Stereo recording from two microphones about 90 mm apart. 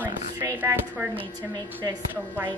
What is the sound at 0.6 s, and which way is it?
Speech, 20° right (ahead or behind).